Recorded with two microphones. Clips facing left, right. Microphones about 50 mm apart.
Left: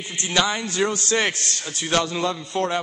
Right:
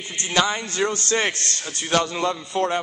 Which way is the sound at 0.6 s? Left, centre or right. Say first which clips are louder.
Left 1 dB; right.